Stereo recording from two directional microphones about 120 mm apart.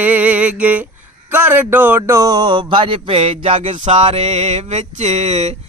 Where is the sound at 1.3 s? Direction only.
10° right (ahead or behind); by 3.5 s 50° right (ahead or behind).